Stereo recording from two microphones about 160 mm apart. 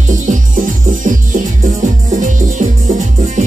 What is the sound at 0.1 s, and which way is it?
Music, 55° right (ahead or behind).